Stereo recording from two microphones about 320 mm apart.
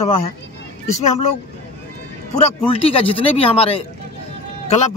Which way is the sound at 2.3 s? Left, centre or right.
Centre.